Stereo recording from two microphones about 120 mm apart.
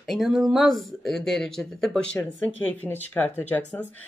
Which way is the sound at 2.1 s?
15° left (ahead or behind).